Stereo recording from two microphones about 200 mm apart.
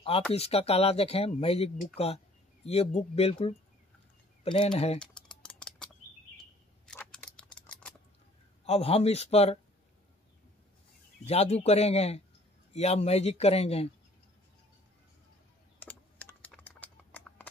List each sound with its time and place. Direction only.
0.3 s speech: 30° left (ahead or behind)
4.9 s typing: 5° left (ahead or behind)
6.9 s typing: 5° left (ahead or behind)
8.6 s speech: 30° left (ahead or behind)
11.2 s speech: 30° left (ahead or behind)
15.8 s typing: 10° left (ahead or behind)